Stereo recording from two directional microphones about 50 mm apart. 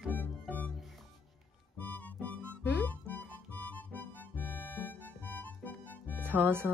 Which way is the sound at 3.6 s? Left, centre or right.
Left.